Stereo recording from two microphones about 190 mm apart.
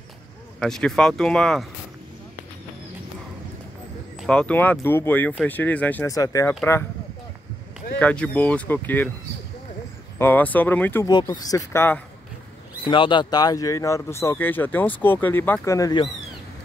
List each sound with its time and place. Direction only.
0.6 s speech: centre (ahead or behind)
4.2 s speech: 5° left (ahead or behind)
8.0 s speech: 5° left (ahead or behind)
10.1 s speech: 10° left (ahead or behind)
11.1 s speech: 20° left (ahead or behind)
12.8 s speech: 25° left (ahead or behind)